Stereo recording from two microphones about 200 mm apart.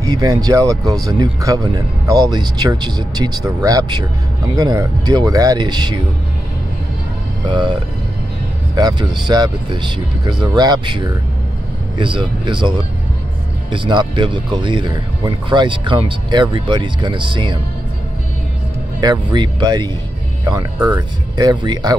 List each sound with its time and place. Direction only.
0.0 s speech: 20° right (ahead or behind)
8.7 s speech: 20° right (ahead or behind)
12.0 s speech: 25° right (ahead or behind)
18.9 s speech: 20° right (ahead or behind)
21.4 s speech: 20° right (ahead or behind)